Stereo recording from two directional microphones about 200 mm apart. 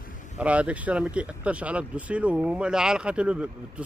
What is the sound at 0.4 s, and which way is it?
Speech, 5° right (ahead or behind).